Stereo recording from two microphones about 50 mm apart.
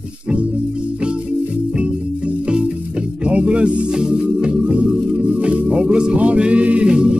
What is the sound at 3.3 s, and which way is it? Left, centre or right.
Music, right.